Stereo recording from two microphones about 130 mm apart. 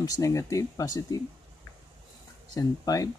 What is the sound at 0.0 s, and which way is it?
Speech, 25° left (ahead or behind).